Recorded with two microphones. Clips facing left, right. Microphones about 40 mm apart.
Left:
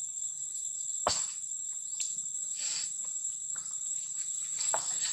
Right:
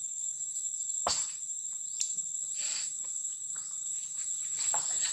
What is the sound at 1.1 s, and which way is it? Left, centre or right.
Cricket, centre.